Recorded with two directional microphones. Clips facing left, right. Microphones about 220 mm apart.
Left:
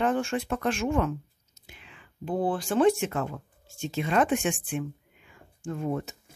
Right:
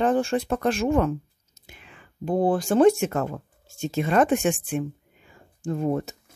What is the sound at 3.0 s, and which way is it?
Speech, 45° right (ahead or behind).